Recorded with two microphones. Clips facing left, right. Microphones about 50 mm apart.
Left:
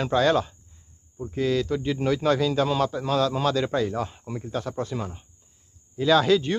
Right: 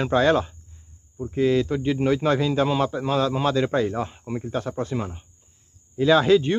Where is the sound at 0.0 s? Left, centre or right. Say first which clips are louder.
Right 2 dB; centre.